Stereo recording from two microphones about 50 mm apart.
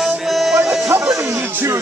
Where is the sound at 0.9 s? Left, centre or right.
Right.